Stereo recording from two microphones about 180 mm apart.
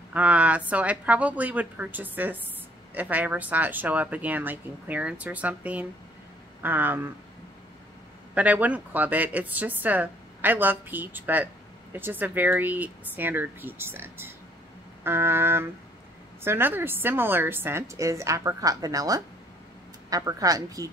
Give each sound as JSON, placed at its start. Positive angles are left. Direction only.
{"t": 0.1, "sound": "a woman's voice", "side_deg": -5}
{"t": 8.4, "sound": "a woman's voice", "side_deg": -10}